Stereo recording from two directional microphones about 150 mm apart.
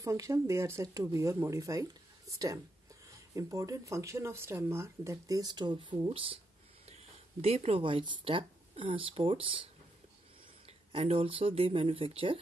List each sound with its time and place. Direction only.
0.0 s speech: 20° right (ahead or behind); by 6.4 s 40° right (ahead or behind)
7.4 s speech: 40° right (ahead or behind)
10.9 s speech: 35° right (ahead or behind)